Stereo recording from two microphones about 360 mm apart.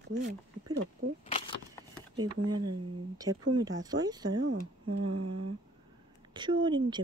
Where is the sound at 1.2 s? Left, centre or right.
Centre.